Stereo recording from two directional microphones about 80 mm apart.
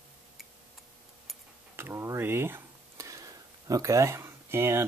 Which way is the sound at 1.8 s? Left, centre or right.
Right.